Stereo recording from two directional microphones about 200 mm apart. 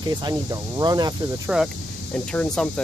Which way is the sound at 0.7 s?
20° right (ahead or behind).